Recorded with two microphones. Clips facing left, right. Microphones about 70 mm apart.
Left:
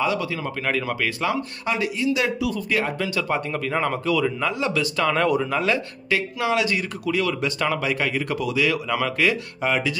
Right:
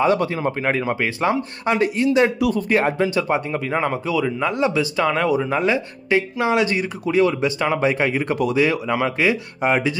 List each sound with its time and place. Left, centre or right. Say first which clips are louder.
0.0 s speech: right 6 dB; right; by 5.6 s centre
5.7 s speech: right 3 dB; right
8.4 s speech: right 5 dB; right